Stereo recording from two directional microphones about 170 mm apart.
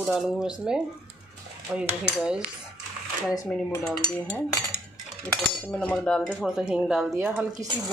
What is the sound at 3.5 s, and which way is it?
Speech, 5° left (ahead or behind).